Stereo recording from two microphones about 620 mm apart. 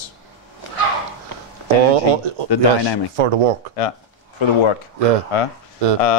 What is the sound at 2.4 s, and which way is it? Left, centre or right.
Speech, left.